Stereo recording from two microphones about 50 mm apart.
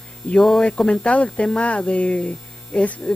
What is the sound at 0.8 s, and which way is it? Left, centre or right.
Speech, centre.